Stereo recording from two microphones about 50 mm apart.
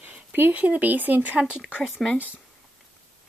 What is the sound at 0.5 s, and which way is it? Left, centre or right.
Speech, right.